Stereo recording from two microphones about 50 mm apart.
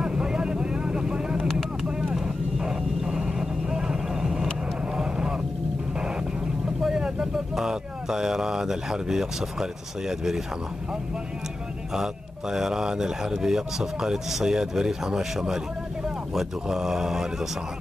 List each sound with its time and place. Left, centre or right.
0.0 s vehicle: centre
6.8 s speech: centre
11.9 s speech: centre